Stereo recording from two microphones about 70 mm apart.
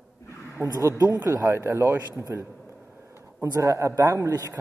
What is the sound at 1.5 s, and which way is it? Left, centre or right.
Speech, right.